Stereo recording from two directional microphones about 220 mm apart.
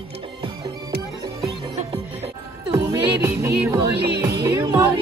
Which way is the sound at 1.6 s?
25° right (ahead or behind).